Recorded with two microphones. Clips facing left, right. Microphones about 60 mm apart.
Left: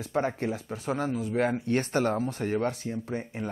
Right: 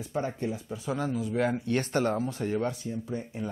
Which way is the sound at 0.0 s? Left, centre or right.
Left.